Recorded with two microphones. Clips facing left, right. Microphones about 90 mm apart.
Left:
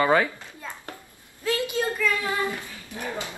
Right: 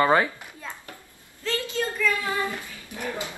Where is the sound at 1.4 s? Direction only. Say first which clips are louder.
Left 2 dB; 15° left (ahead or behind).